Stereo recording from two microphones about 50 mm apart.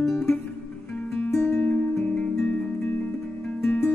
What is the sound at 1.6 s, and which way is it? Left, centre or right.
Music, left.